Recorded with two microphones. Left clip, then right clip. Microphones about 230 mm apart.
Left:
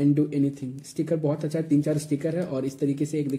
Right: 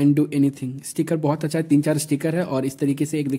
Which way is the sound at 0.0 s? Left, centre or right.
Right.